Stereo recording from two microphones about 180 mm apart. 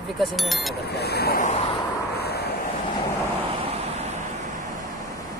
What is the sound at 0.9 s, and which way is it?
Speech, 65° left (ahead or behind).